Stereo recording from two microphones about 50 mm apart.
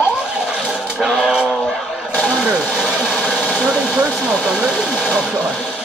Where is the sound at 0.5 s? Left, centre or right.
Centre.